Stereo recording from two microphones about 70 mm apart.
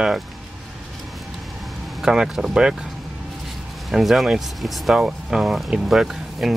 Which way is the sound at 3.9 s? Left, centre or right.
Centre.